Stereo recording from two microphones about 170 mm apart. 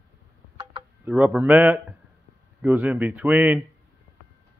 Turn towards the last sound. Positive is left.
turn(degrees=-10)  # may be behind; listen again after turning